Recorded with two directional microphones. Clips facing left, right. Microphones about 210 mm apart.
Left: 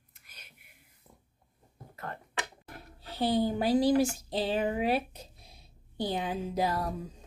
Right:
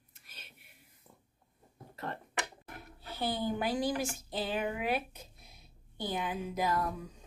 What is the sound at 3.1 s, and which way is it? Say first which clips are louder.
A woman's voice: left 6 dB; 35° left (ahead or behind).